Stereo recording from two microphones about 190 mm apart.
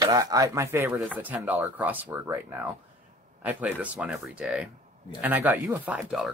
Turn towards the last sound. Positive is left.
turn(degrees=-5)  # may be behind; listen again after turning